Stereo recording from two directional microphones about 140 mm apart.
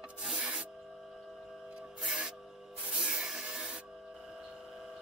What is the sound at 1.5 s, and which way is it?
Music, 5° right (ahead or behind).